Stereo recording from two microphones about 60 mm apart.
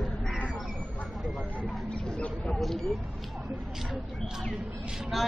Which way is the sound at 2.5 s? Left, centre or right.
Centre.